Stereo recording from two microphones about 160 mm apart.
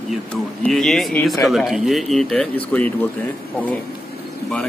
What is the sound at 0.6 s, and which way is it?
A man's voice, centre (ahead or behind).